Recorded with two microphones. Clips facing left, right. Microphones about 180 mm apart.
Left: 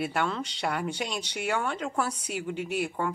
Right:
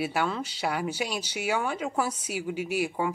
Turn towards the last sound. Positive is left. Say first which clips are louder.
# right 2 dB
turn(degrees=-5)  # may be behind; listen again after turning